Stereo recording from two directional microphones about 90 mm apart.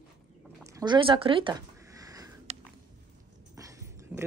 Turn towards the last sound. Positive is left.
turn(degrees=-40)  # may be behind; listen again after turning